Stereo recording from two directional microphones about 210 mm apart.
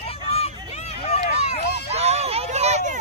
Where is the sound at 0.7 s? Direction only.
30° left (ahead or behind).